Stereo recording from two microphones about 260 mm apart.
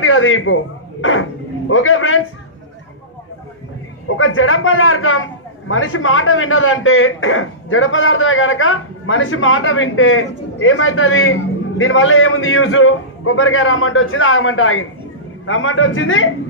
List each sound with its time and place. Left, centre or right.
0.0 s a man's voice: left
1.7 s a man's voice: left
4.2 s a man's voice: left